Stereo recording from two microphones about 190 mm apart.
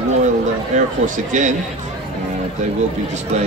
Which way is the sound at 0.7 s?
40° right (ahead or behind).